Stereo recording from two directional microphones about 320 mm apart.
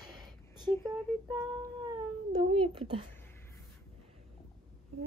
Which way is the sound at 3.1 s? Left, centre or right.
Centre.